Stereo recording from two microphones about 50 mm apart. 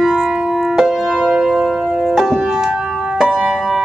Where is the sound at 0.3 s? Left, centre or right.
Centre.